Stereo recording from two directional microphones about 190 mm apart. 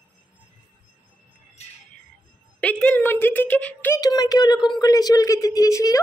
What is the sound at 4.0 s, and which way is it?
Speech, 20° left (ahead or behind).